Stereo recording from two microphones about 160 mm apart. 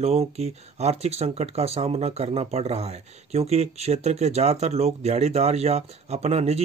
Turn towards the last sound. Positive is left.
turn(degrees=-45)  # may be behind; listen again after turning